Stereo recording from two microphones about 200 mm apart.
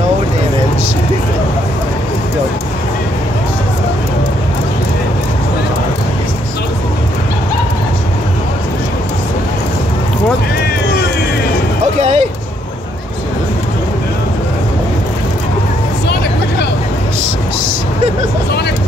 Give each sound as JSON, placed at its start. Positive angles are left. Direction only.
{"t": 12.0, "sound": "vehicle", "side_deg": -35}